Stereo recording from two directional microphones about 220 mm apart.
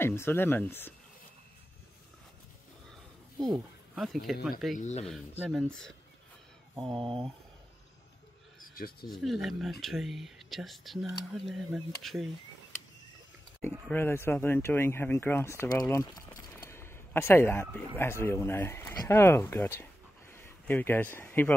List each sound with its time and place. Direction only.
0.0 s speech: 10° left (ahead or behind)
3.5 s speech: centre (ahead or behind)
4.7 s speech: 30° left (ahead or behind)
5.4 s speech: 5° right (ahead or behind)
8.5 s a sound: 40° left (ahead or behind)
9.1 s speech: centre (ahead or behind)
13.6 s speech: 10° left (ahead or behind)